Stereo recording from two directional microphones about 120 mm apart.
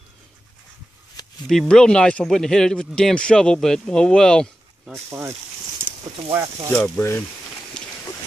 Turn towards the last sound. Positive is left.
turn(degrees=5)  # may be behind; listen again after turning